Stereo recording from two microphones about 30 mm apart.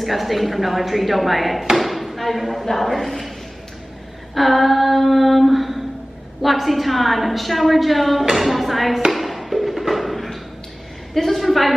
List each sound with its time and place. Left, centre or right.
0.0 s a woman's voice: centre
4.4 s a woman's voice: centre
9.1 s a sound: centre
11.1 s a woman's voice: centre